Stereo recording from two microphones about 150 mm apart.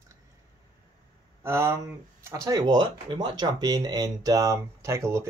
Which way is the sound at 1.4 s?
20° right (ahead or behind).